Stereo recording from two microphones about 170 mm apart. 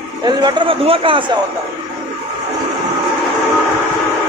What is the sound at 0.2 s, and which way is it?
A man's voice, 25° right (ahead or behind).